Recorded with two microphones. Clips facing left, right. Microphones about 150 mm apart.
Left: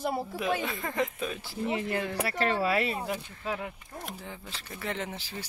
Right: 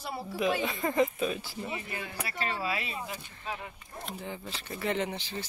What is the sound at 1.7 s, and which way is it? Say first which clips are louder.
Speech: left 11 dB; 80° left.